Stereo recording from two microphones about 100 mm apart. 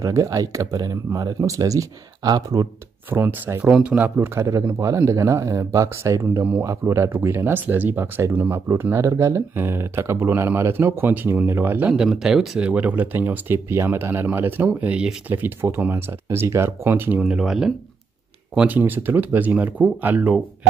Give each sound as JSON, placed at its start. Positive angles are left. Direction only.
{"t": 0.0, "sound": "speech", "side_deg": -35}
{"t": 3.1, "sound": "speech", "side_deg": -20}
{"t": 4.7, "sound": "speech", "side_deg": -30}
{"t": 11.9, "sound": "speech", "side_deg": -5}